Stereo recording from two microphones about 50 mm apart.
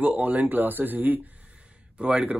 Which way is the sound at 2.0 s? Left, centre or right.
Right.